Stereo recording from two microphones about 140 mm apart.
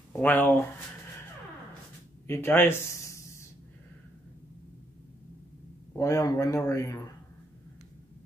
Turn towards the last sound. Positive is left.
turn(degrees=20)  # may be behind; listen again after turning